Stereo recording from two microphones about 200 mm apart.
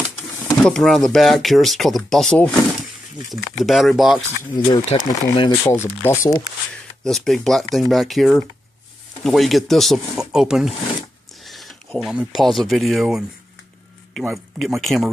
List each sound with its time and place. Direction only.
0.7 s speech: centre (ahead or behind)
4.6 s speech: 25° left (ahead or behind)
7.0 s speech: centre (ahead or behind)
14.2 s speech: centre (ahead or behind)